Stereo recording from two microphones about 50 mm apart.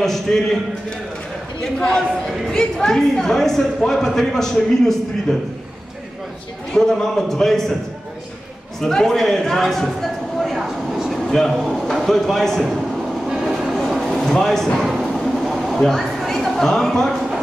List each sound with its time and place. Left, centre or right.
0.0 s a woman's voice: centre
1.6 s a woman's voice: centre
6.7 s a woman's voice: centre
8.8 s a sound: centre
11.2 s a woman's voice: centre
13.5 s music: centre
14.9 s a sound: centre